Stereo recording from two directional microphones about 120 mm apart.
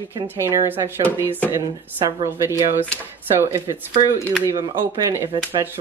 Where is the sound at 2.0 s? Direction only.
30° right (ahead or behind).